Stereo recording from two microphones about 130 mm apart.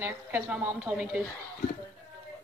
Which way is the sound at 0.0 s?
10° right (ahead or behind).